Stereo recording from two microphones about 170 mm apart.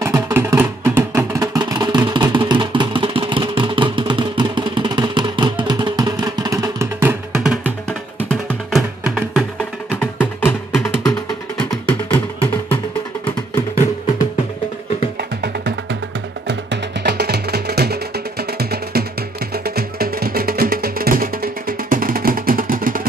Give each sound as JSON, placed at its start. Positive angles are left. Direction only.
{"t": 0.0, "sound": "music", "side_deg": -15}
{"t": 9.8, "sound": "music", "side_deg": 10}
{"t": 15.1, "sound": "music", "side_deg": -75}
{"t": 17.0, "sound": "music", "side_deg": -75}